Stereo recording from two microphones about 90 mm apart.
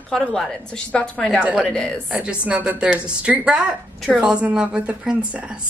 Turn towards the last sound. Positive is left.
turn(degrees=-10)  # may be behind; listen again after turning